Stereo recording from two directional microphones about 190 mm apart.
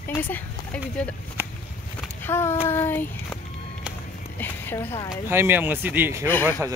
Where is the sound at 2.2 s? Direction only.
10° left (ahead or behind).